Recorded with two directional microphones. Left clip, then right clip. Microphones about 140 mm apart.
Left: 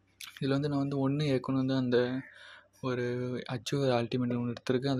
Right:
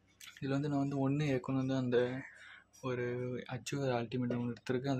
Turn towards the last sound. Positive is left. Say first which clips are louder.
# left 5 dB
turn(degrees=25)  # may be behind; listen again after turning